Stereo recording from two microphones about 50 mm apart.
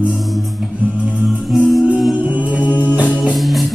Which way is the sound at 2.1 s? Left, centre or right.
Right.